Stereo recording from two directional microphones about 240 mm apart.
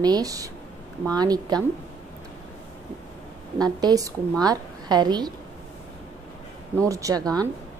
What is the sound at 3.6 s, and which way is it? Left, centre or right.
A woman's voice, centre.